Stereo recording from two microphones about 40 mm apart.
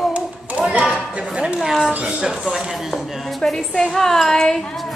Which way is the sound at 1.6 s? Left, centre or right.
Centre.